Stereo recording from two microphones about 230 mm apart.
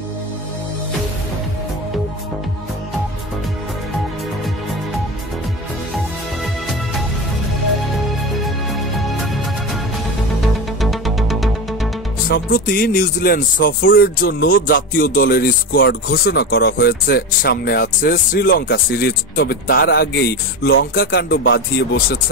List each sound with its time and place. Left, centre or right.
10.8 s music: centre
12.3 s speech: left